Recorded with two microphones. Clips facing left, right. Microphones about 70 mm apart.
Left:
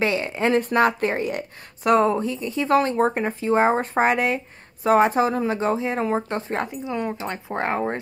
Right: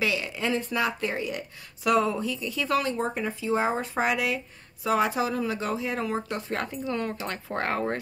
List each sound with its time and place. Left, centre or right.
0.0 s a woman's voice: left
6.6 s speech: centre